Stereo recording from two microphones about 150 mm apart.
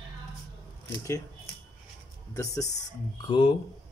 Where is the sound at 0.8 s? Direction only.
20° left (ahead or behind).